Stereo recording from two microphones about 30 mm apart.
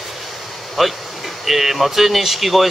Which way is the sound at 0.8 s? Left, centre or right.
Centre.